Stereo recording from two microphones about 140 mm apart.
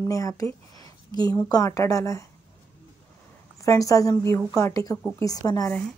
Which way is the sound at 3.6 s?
25° left (ahead or behind).